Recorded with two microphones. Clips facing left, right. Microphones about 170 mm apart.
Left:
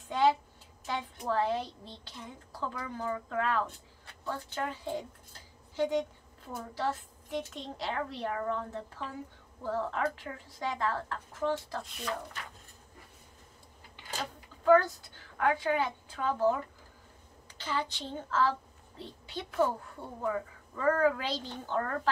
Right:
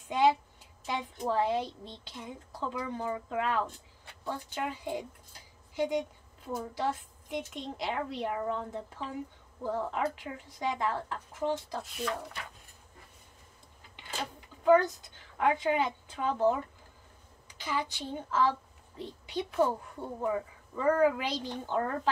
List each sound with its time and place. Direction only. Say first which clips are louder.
0.1 s a sound: right 1 dB; 15° right (ahead or behind)
0.8 s a woman's voice: right 1 dB; 15° right (ahead or behind)
11.8 s speech: right 6 dB; centre (ahead or behind)
14.6 s a woman's voice: even; 20° right (ahead or behind)
17.6 s a woman's voice: right 1 dB; 15° right (ahead or behind)